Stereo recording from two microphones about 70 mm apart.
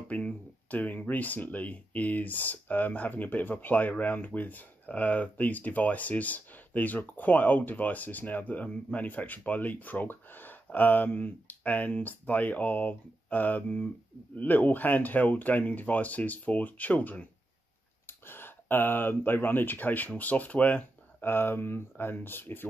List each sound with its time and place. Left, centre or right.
0.1 s speech: left
18.0 s speech: left